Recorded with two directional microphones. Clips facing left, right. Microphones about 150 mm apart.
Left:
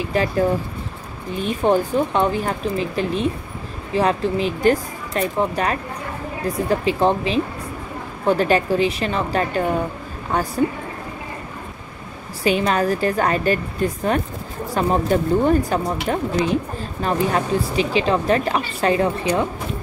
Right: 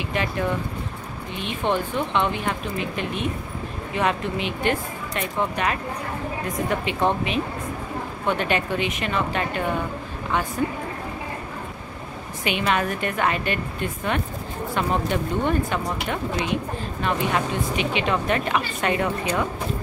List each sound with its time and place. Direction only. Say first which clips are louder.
0.0 s a woman's voice: left 6 dB; 35° left (ahead or behind)
12.4 s a woman's voice: left 5 dB; 35° left (ahead or behind)